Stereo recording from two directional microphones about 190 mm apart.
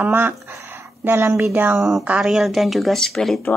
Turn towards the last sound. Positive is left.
turn(degrees=5)  # may be behind; listen again after turning